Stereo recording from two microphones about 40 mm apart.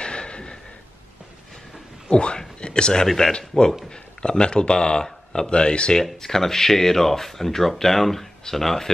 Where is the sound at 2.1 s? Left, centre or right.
Left.